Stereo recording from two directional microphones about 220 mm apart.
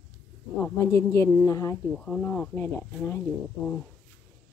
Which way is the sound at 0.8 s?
15° left (ahead or behind).